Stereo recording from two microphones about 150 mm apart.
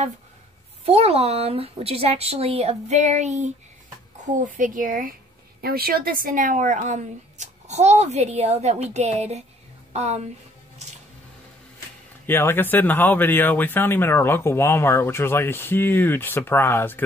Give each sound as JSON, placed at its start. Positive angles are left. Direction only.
{"t": 0.8, "sound": "speech", "side_deg": -40}
{"t": 5.6, "sound": "speech", "side_deg": -90}
{"t": 12.3, "sound": "speech", "side_deg": 15}